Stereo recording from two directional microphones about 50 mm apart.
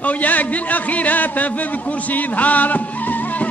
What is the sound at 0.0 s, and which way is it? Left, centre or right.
A man's voice, left.